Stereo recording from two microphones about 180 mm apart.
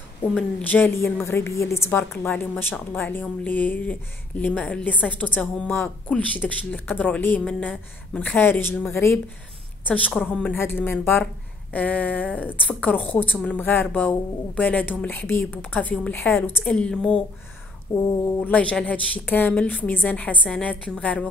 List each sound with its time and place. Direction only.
0.3 s a woman's voice: 5° left (ahead or behind)
17.9 s a woman's voice: 15° left (ahead or behind)